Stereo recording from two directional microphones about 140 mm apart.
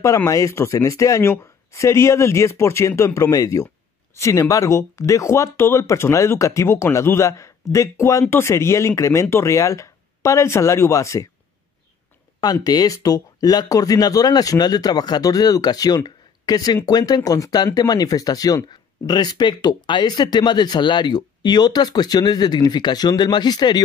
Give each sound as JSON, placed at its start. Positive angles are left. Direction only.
{"t": 0.0, "sound": "speech", "side_deg": 25}
{"t": 12.6, "sound": "speech", "side_deg": 25}